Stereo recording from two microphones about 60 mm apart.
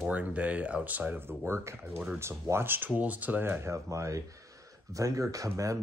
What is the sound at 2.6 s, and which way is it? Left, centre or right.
Speech, right.